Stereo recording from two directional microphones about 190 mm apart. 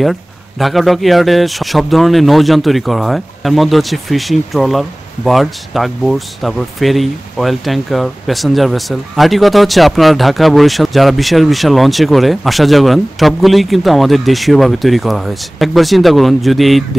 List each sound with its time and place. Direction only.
0.0 s speech: centre (ahead or behind)